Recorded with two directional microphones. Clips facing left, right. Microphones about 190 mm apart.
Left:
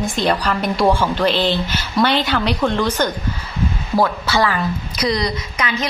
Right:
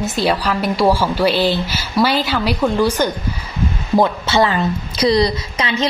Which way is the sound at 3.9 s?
20° right (ahead or behind).